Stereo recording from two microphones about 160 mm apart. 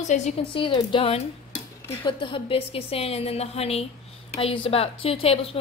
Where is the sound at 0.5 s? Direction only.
30° left (ahead or behind).